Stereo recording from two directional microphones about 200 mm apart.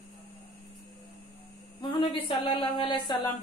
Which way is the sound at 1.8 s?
25° left (ahead or behind).